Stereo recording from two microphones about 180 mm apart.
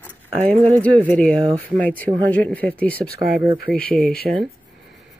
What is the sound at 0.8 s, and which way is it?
Speech, 5° left (ahead or behind).